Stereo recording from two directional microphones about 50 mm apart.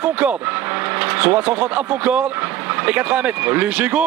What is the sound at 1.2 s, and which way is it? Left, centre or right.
A man's voice, right.